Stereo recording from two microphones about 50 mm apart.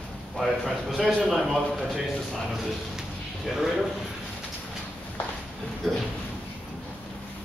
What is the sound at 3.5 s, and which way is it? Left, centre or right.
Speech, centre.